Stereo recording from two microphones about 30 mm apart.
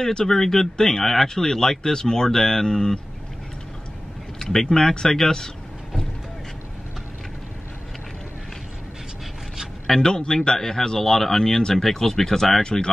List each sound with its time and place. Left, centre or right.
0.0 s speech: centre
4.4 s speech: centre
9.8 s a man's voice: centre
10.1 s speech: left